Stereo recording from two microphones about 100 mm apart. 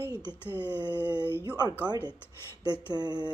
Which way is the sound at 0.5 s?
20° left (ahead or behind).